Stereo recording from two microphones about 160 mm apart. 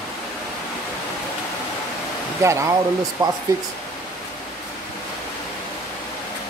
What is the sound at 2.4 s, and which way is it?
Speech, 20° right (ahead or behind).